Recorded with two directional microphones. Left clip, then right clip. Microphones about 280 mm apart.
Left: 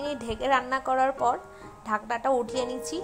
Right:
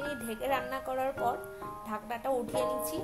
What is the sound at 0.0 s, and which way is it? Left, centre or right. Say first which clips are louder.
Speech: left 6 dB; centre.